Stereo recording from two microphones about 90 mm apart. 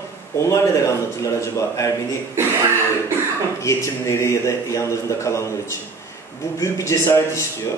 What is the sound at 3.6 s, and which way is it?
A man's voice, 35° left (ahead or behind).